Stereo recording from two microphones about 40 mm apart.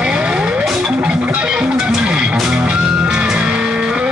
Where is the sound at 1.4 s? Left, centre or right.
Right.